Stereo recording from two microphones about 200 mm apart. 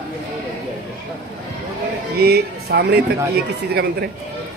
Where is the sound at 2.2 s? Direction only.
50° right (ahead or behind).